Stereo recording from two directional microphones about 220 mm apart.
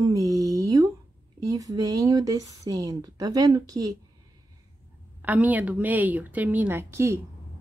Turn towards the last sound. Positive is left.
turn(degrees=-10)  # may be behind; listen again after turning